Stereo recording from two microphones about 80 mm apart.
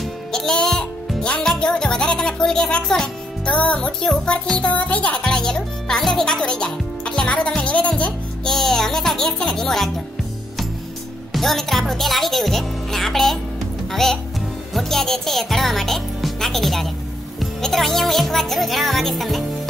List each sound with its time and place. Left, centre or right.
0.0 s music: centre
4.1 s a child's voice: centre
7.9 s speech: centre
11.3 s speech: centre